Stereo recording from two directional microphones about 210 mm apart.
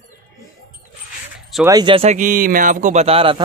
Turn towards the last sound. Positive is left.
turn(degrees=-25)  # may be behind; listen again after turning